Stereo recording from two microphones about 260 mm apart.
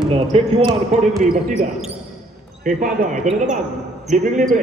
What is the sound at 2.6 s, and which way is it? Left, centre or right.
A man's voice, right.